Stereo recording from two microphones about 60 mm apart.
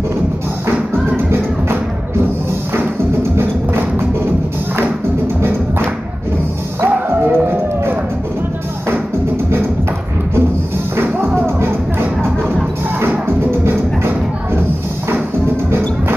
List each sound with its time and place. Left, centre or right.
1.1 s music: right
6.8 s music: right
11.0 s music: right
13.5 s music: right